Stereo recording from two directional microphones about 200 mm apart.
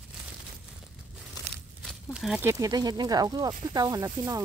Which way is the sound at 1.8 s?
Centre (ahead or behind).